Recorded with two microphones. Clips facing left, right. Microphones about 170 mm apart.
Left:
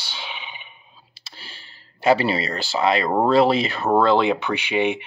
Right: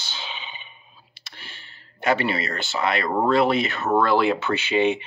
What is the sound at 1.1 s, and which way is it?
Speech, 30° left (ahead or behind).